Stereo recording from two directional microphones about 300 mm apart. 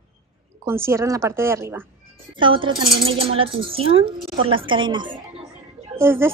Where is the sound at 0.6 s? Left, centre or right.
Centre.